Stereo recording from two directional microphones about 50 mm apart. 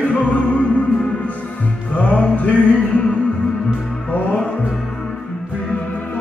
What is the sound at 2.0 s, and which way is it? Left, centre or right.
Music, left.